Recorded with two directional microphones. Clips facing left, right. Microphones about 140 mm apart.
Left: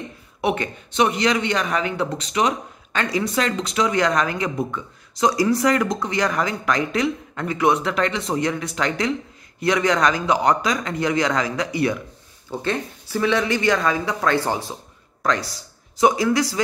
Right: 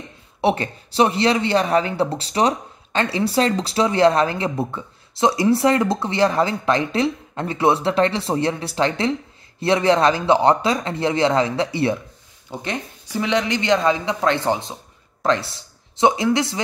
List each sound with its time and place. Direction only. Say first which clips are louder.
0.4 s speech: right 3 dB; 30° right (ahead or behind)
12.4 s speech: left 3 dB; 15° right (ahead or behind)